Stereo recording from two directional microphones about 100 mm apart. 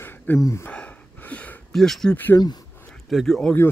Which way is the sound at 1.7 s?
5° left (ahead or behind).